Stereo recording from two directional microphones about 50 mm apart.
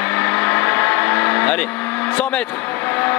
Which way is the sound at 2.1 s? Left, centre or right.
Left.